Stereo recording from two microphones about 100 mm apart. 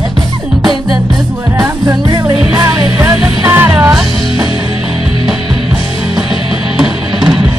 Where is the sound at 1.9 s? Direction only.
35° right (ahead or behind).